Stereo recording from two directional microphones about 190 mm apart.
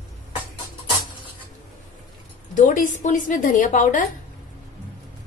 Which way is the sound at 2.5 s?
45° left (ahead or behind).